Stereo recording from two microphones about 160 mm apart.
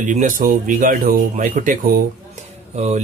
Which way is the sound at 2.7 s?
45° right (ahead or behind).